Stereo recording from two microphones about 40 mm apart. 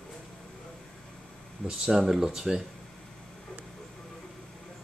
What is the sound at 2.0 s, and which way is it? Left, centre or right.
Speech, centre.